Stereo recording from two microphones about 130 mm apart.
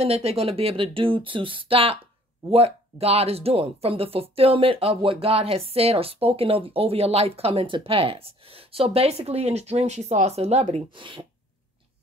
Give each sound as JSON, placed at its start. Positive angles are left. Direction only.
{"t": 0.0, "sound": "speech", "side_deg": -50}
{"t": 10.9, "sound": "speech", "side_deg": -40}